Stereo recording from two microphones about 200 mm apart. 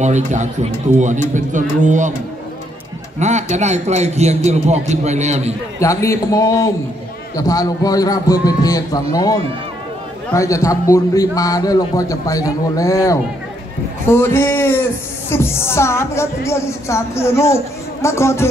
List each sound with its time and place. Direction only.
0.0 s a man's voice: 35° right (ahead or behind)
3.2 s a man's voice: 35° right (ahead or behind)
5.8 s speech: 15° left (ahead or behind)